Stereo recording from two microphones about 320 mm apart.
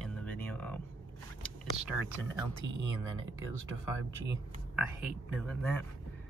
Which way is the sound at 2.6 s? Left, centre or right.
Right.